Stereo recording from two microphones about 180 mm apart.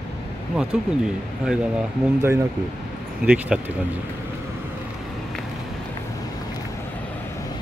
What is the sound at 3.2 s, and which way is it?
Speech, 5° right (ahead or behind).